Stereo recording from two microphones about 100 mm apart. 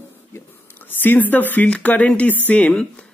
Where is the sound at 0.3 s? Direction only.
20° left (ahead or behind).